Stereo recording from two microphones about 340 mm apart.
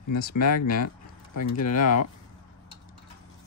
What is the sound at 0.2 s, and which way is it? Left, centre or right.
Speech, left.